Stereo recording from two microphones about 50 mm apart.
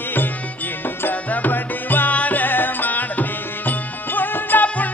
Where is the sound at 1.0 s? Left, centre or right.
Left.